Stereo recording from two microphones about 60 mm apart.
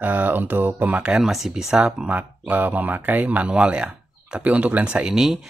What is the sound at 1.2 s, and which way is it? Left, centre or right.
Speech, centre.